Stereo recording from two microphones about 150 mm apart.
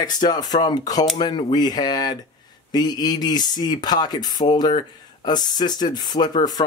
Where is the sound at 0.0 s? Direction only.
25° left (ahead or behind).